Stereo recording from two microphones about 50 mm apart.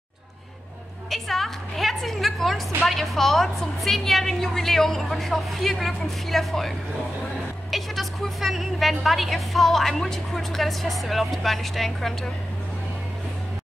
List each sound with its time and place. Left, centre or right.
1.1 s a woman's voice: centre
7.7 s a woman's voice: centre